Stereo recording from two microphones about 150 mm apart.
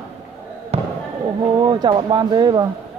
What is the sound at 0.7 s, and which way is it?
Basketball bounce, 45° right (ahead or behind).